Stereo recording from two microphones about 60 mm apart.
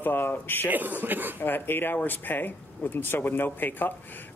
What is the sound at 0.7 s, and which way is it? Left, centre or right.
Speech, right.